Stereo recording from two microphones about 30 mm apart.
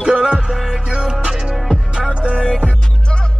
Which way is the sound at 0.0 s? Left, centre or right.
Right.